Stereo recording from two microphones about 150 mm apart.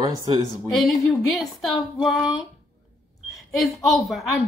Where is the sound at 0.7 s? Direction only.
Centre (ahead or behind).